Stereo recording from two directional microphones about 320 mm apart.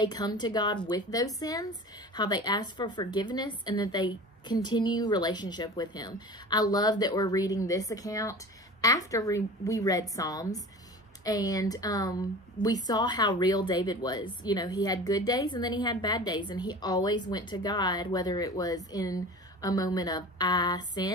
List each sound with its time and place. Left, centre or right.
0.0 s speech: centre